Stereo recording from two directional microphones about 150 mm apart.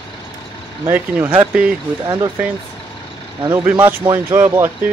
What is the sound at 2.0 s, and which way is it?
Speech, 25° right (ahead or behind).